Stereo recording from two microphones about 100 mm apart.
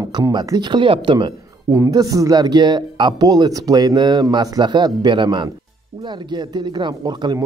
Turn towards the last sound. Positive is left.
turn(degrees=-45)  # may be behind; listen again after turning